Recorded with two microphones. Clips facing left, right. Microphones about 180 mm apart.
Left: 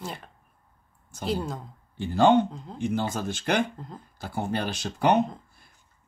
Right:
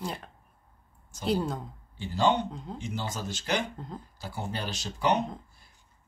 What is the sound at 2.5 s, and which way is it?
Speech, centre (ahead or behind).